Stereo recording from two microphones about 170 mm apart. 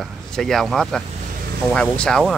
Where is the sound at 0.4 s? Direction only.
Centre (ahead or behind).